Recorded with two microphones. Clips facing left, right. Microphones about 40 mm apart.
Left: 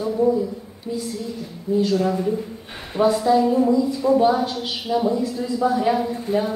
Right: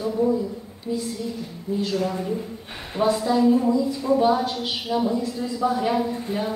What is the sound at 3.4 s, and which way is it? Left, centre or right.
Speech, centre.